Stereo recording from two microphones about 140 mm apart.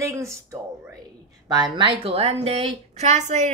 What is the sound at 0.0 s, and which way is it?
Speech, 20° right (ahead or behind).